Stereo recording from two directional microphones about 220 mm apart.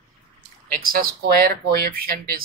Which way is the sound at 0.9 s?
40° right (ahead or behind).